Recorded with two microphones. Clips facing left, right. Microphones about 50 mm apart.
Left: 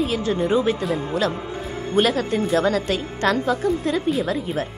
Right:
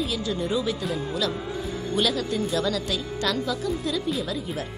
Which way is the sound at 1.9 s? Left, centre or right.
Left.